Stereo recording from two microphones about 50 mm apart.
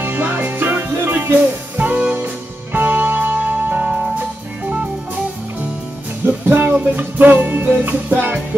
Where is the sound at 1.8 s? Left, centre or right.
Right.